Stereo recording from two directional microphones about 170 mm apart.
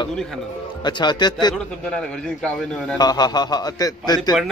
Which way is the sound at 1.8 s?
5° left (ahead or behind).